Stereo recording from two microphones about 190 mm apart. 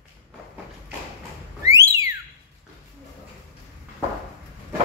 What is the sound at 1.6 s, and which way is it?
Whistling, 15° right (ahead or behind).